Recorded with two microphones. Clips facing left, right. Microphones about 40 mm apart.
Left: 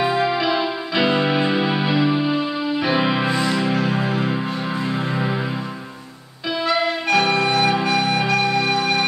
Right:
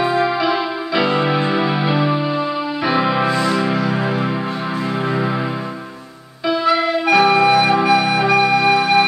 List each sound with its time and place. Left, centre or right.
0.0 s music: centre
3.4 s music: centre
3.7 s music: right
6.6 s music: centre